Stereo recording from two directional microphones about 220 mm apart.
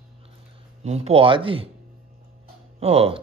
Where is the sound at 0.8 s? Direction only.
30° right (ahead or behind).